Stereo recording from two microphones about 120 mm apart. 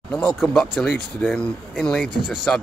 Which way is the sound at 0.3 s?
Centre (ahead or behind).